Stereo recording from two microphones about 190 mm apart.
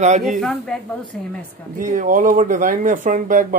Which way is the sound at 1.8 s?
45° right (ahead or behind).